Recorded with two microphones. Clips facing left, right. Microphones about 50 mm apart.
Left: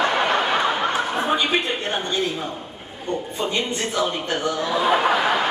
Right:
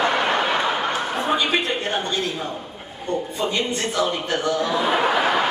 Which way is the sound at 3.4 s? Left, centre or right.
Centre.